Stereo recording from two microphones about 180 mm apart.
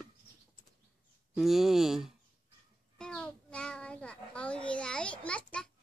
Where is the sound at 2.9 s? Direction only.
5° left (ahead or behind).